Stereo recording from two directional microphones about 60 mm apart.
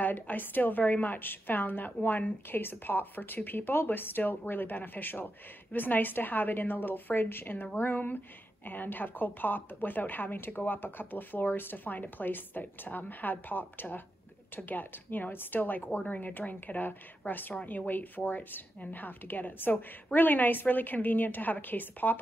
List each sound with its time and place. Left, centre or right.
0.0 s speech: left